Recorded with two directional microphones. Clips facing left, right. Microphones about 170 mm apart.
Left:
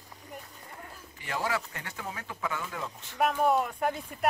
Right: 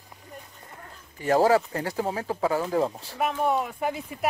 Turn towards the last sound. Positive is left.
turn(degrees=-5)  # may be behind; listen again after turning